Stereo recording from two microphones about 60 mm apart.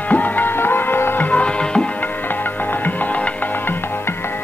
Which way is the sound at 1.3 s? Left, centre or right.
Centre.